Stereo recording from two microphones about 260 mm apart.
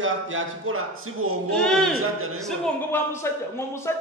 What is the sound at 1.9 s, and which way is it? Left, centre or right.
Speech, right.